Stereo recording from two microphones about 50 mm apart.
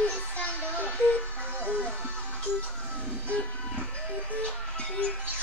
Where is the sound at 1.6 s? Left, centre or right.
Left.